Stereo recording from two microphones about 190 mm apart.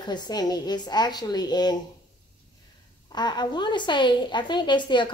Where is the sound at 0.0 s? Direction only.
20° left (ahead or behind).